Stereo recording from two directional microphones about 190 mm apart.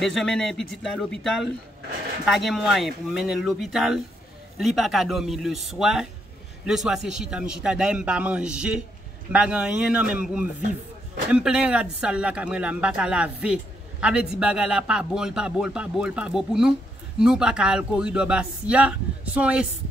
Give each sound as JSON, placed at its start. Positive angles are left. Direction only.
{"t": 0.0, "sound": "speech", "side_deg": 5}